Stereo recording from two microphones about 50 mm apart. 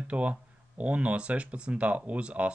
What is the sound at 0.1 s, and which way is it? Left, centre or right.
Speech, right.